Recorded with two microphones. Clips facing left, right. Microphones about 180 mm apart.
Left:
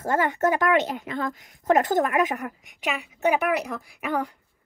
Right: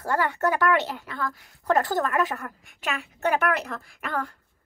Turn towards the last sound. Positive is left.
turn(degrees=15)  # may be behind; listen again after turning